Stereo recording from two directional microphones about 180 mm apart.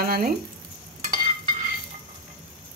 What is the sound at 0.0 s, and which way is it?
Frying, 55° right (ahead or behind).